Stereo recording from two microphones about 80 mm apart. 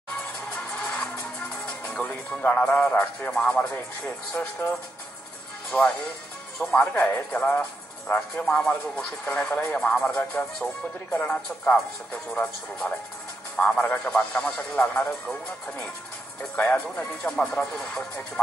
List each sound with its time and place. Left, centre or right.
0.5 s music: centre
1.7 s speech: centre
5.7 s speech: centre